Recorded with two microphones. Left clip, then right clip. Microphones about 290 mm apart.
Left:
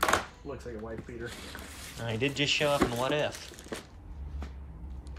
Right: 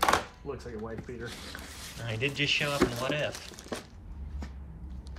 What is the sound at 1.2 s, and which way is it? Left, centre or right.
Speech, centre.